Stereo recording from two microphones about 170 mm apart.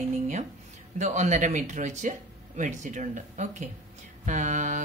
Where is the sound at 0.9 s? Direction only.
45° right (ahead or behind).